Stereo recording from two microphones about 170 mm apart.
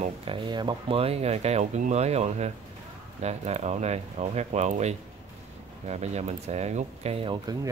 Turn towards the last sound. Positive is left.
turn(degrees=-30)  # may be behind; listen again after turning